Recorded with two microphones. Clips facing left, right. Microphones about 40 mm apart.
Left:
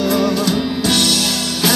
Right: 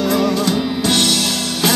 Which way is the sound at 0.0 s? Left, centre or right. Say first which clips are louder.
Even; right.